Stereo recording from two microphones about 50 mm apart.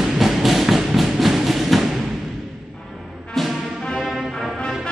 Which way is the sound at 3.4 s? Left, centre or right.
Centre.